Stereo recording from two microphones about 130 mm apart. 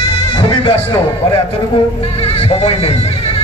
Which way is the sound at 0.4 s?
45° left (ahead or behind).